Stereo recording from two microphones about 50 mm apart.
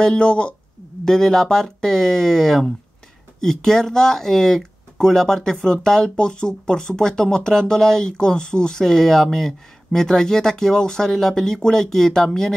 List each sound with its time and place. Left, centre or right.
0.0 s speech: centre
1.0 s speech: centre